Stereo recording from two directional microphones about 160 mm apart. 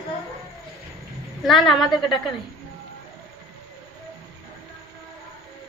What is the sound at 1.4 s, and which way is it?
Speech, centre (ahead or behind).